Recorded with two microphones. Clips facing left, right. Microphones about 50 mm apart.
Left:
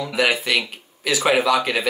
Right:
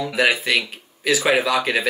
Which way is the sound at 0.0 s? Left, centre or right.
Centre.